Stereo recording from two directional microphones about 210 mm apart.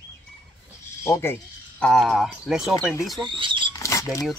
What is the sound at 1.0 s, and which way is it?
Speech, 10° left (ahead or behind).